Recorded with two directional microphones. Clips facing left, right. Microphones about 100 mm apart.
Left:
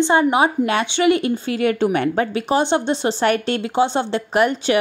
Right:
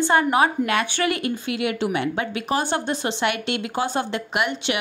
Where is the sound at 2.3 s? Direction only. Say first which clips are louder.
Left 5 dB; 30° left (ahead or behind).